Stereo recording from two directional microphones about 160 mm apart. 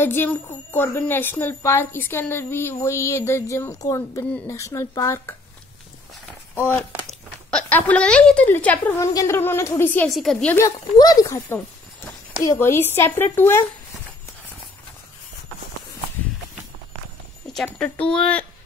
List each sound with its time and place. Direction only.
0.0 s a woman's voice: 15° left (ahead or behind)
6.5 s a woman's voice: 15° left (ahead or behind)
10.0 s a woman's voice: centre (ahead or behind)
10.6 s a woman's voice: 25° left (ahead or behind)
17.7 s a woman's voice: 5° left (ahead or behind)